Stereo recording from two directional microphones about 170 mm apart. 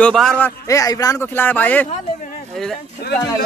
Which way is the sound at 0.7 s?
20° left (ahead or behind).